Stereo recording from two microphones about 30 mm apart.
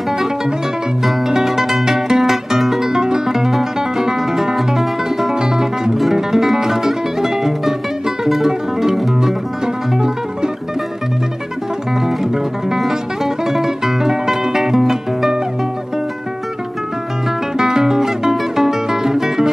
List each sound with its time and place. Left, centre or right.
1.3 s music: centre
2.9 s music: right
6.1 s music: centre
12.2 s music: centre
17.6 s music: centre